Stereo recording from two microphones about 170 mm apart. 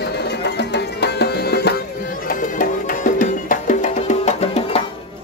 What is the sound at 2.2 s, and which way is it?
Music, 55° left (ahead or behind).